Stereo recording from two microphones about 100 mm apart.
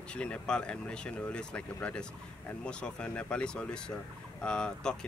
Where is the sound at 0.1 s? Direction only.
10° left (ahead or behind).